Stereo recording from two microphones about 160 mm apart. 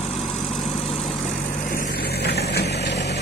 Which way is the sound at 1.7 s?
70° left (ahead or behind).